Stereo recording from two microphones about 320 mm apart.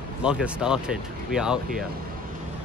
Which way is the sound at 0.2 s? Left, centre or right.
Centre.